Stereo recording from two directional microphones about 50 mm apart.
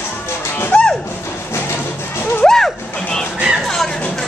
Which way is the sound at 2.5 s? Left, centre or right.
Centre.